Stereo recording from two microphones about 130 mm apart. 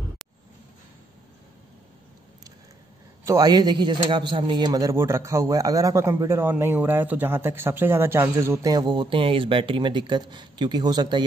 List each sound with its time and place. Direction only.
3.3 s a man's voice: 30° right (ahead or behind)